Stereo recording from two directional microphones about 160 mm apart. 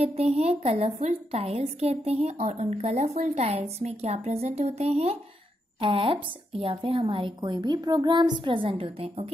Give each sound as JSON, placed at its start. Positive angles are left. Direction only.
{"t": 0.0, "sound": "a woman's voice", "side_deg": -40}